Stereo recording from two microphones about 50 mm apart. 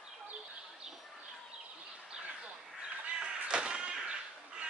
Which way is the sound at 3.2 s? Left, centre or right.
Centre.